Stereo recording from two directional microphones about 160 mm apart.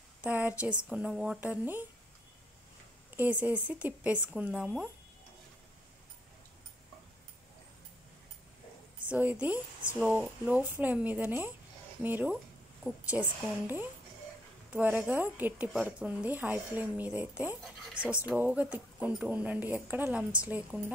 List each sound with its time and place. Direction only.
0.2 s speech: 10° right (ahead or behind)
3.2 s speech: 10° right (ahead or behind)
9.1 s speech: 10° right (ahead or behind)